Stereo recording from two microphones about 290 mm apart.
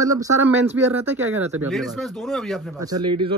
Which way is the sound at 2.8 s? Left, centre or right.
Centre.